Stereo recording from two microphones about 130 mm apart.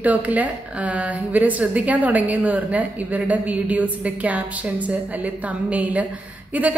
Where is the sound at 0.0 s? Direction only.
10° right (ahead or behind).